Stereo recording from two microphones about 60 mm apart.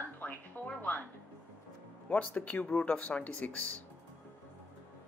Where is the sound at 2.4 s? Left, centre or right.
Left.